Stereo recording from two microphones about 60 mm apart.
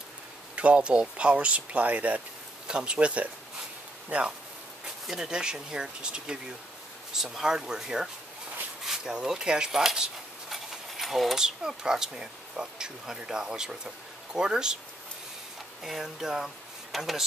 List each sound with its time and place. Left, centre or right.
0.6 s speech: right
5.0 s speech: centre
10.5 s a sound: centre
11.4 s speech: centre
15.8 s speech: centre